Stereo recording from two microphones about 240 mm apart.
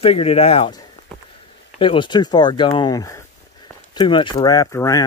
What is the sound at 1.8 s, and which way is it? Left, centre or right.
Speech, left.